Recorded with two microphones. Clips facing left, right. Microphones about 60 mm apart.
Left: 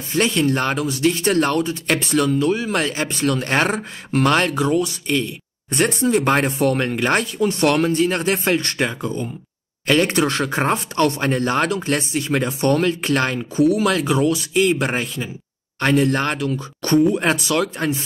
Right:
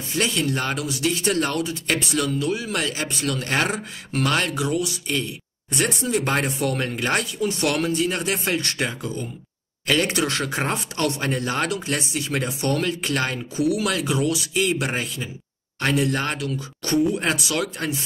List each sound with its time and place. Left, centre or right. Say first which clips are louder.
0.1 s speech: left 5 dB; left